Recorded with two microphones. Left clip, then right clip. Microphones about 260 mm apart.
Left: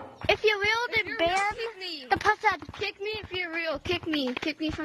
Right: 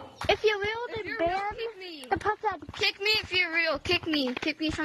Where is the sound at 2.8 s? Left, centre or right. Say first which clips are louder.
Right 9 dB; right.